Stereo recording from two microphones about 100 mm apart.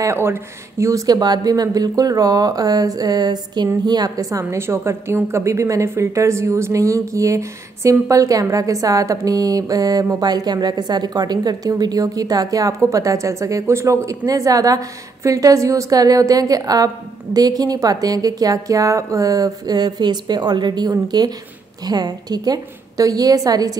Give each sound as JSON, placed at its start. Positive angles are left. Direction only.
{"t": 0.0, "sound": "a woman's voice", "side_deg": -25}